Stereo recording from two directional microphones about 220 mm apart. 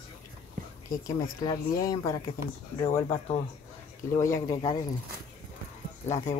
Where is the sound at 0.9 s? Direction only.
15° left (ahead or behind).